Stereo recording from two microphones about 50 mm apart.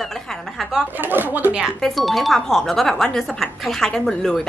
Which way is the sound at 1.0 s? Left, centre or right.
Right.